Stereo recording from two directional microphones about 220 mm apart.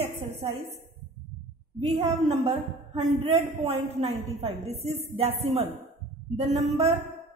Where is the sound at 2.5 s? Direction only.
30° right (ahead or behind).